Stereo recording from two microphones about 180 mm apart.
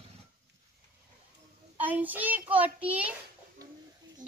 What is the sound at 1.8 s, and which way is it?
Child singing, 10° right (ahead or behind).